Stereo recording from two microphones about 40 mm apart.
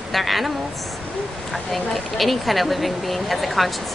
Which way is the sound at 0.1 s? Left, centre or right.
Centre.